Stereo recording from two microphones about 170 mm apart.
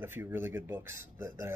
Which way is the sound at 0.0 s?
15° right (ahead or behind).